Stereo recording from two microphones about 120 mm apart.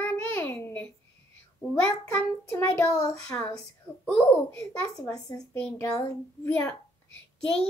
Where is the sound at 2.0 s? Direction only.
20° left (ahead or behind).